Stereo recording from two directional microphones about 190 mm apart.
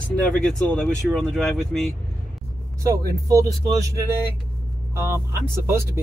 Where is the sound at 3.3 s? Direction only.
20° right (ahead or behind).